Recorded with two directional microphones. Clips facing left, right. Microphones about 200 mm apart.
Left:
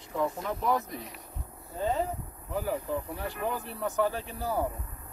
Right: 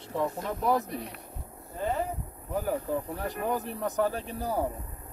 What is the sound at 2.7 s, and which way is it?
Speech, 45° right (ahead or behind).